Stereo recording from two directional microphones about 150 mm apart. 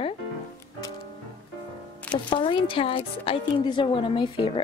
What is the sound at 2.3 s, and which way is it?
A woman's voice, 35° left (ahead or behind).